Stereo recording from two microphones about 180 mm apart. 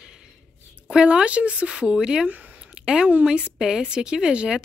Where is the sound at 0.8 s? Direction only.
5° right (ahead or behind).